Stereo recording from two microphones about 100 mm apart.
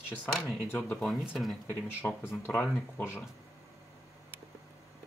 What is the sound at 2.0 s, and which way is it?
Speech, 25° left (ahead or behind).